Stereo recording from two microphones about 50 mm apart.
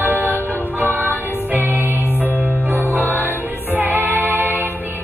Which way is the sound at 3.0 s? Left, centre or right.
Left.